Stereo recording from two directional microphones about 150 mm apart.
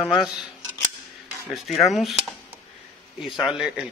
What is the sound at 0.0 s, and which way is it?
Speech, centre (ahead or behind).